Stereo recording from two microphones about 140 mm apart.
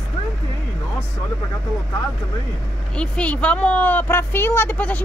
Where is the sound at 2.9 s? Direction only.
10° left (ahead or behind).